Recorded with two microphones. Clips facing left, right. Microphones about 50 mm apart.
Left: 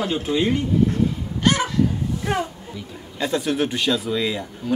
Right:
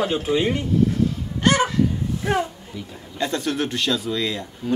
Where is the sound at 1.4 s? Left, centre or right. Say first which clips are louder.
Right 1 dB; centre.